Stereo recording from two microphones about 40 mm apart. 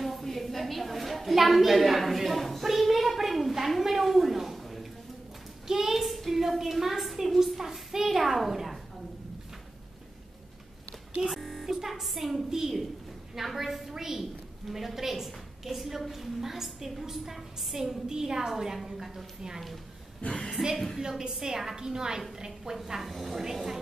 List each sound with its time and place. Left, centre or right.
0.0 s a sound: centre
6.1 s a woman's voice: centre
11.2 s music: centre
13.3 s a woman's voice: centre
20.2 s a woman's voice: left
20.7 s a woman's voice: centre
21.2 s a woman's voice: centre
23.0 s a woman's voice: centre